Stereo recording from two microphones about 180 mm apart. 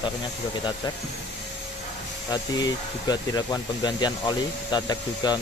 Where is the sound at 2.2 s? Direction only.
20° left (ahead or behind).